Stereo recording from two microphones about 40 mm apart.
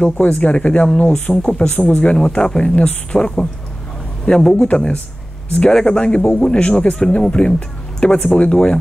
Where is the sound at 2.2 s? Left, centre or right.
Centre.